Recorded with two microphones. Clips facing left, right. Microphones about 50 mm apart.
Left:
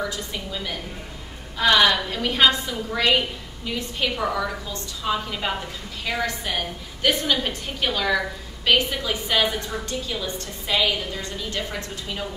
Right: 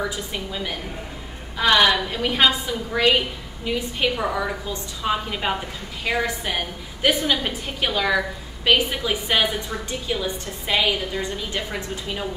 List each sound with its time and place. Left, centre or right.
0.0 s a woman's voice: centre